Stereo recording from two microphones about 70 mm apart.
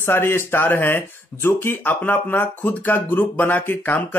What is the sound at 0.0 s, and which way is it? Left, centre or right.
Speech, left.